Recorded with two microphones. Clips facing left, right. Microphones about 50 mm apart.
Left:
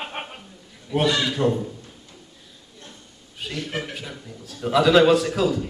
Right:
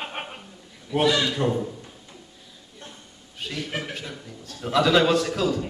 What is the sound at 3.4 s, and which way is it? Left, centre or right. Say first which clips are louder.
A man's voice: left 1 dB; centre.